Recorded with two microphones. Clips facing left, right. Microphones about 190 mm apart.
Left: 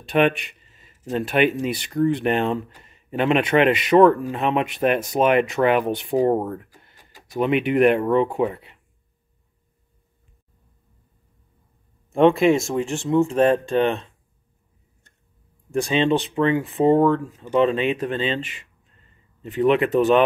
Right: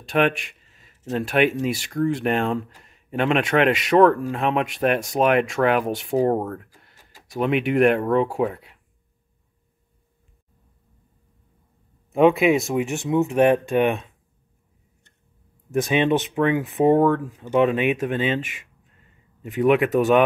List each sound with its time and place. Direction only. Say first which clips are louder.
0.0 s speech: left 2 dB; centre (ahead or behind)
12.1 s speech: left 1 dB; 5° right (ahead or behind)
12.7 s speech: left 1 dB; 15° right (ahead or behind)
15.7 s speech: even; 15° right (ahead or behind)